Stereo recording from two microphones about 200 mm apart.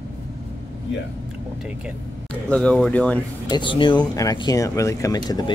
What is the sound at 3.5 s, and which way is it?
Speech, 25° left (ahead or behind).